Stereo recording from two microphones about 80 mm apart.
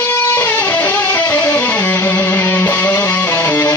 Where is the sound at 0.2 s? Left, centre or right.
Left.